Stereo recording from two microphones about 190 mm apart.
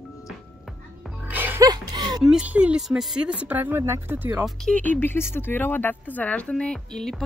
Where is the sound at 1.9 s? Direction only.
25° right (ahead or behind).